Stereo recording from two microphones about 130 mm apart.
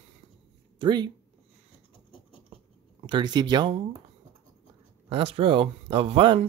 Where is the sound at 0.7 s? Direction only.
35° right (ahead or behind).